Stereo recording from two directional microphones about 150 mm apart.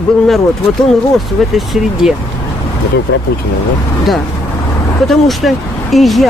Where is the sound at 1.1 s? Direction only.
Centre (ahead or behind).